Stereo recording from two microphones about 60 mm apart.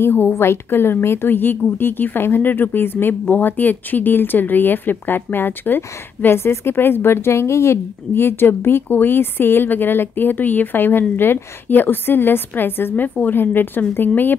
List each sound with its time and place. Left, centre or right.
0.0 s a woman's voice: left